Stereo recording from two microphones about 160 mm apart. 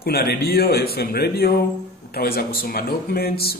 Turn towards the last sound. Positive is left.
turn(degrees=75)  # may be behind; listen again after turning